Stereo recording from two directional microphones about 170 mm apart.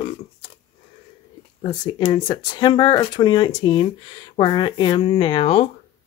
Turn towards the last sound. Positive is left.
turn(degrees=35)  # may be behind; listen again after turning